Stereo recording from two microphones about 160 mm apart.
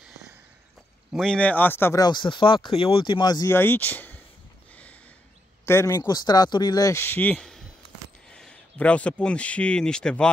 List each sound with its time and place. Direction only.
1.1 s speech: 5° left (ahead or behind)
5.7 s speech: 20° left (ahead or behind)